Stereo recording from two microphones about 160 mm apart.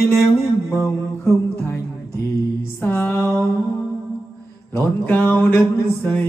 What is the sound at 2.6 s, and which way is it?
Mantra, 15° left (ahead or behind).